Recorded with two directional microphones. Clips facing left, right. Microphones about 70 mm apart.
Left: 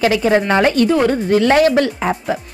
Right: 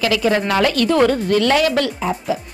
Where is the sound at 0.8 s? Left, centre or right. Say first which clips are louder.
Left 1 dB; centre.